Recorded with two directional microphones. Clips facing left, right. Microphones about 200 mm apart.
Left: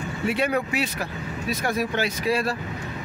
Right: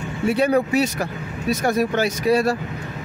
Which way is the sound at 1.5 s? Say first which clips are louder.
Right 6 dB; 45° right (ahead or behind).